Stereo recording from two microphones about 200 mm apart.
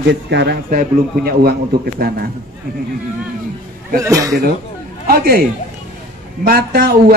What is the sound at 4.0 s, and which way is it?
Speech, 15° right (ahead or behind).